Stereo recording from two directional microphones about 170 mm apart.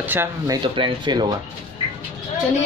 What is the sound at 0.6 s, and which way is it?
Speech, 30° right (ahead or behind).